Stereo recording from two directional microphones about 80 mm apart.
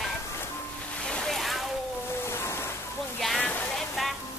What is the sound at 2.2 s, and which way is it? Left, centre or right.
Music, left.